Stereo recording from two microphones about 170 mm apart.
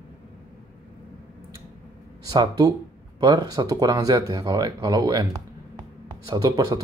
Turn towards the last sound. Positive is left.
turn(degrees=-25)  # may be behind; listen again after turning